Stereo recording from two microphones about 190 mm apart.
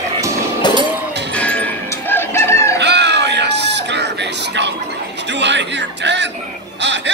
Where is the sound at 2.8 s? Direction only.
65° right (ahead or behind).